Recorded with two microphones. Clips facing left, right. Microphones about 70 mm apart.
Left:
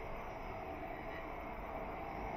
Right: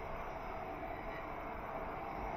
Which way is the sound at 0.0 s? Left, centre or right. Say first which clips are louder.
Right 2 dB; right.